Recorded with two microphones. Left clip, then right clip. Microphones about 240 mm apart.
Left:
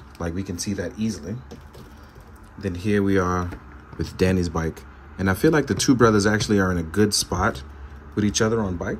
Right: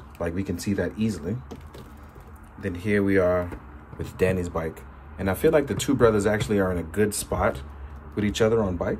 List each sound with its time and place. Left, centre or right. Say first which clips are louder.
0.2 s speech: right 1 dB; centre
2.6 s speech: left 1 dB; centre